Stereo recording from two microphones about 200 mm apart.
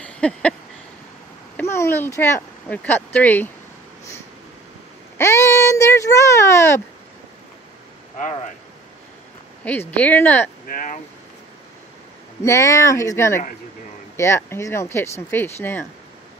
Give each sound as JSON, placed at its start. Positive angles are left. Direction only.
{"t": 0.0, "sound": "a sound", "side_deg": 5}
{"t": 1.6, "sound": "speech", "side_deg": 10}
{"t": 5.1, "sound": "speech", "side_deg": 15}
{"t": 9.7, "sound": "speech", "side_deg": 10}
{"t": 10.7, "sound": "speech", "side_deg": 45}
{"t": 12.4, "sound": "speech", "side_deg": 15}